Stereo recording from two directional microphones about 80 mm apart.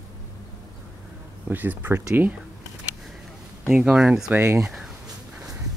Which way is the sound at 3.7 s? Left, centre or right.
Centre.